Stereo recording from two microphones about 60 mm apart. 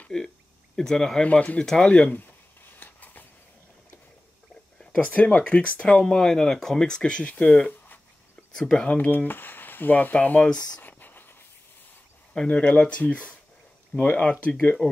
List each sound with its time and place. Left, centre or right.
0.1 s speech: centre
1.2 s speech: left
2.8 s a sound: left
5.0 s speech: left
8.8 s speech: left
10.8 s a sound: left
12.4 s speech: left
14.2 s speech: centre
14.8 s speech: left